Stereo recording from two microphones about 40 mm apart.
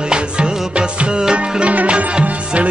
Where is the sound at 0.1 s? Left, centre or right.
Right.